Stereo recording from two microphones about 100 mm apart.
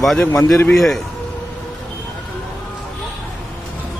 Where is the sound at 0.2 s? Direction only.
30° left (ahead or behind).